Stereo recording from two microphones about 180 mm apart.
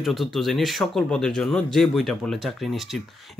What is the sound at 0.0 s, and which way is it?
Speech, centre (ahead or behind).